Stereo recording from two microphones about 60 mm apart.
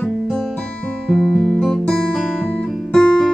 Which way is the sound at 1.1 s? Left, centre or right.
Centre.